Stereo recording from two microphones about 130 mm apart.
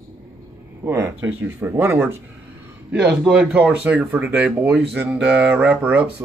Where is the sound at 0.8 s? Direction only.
20° right (ahead or behind).